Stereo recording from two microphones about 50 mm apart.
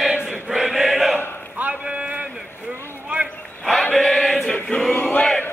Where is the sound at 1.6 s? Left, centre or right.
Right.